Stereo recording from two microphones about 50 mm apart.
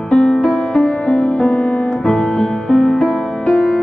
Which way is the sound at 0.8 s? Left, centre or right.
Centre.